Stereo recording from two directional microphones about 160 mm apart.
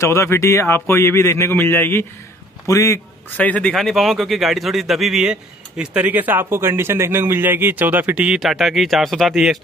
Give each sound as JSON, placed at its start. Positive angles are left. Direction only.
{"t": 0.0, "sound": "speech", "side_deg": 20}